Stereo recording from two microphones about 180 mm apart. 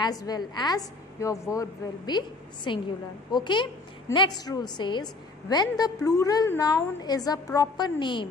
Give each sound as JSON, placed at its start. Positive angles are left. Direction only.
{"t": 0.0, "sound": "a woman's voice", "side_deg": 20}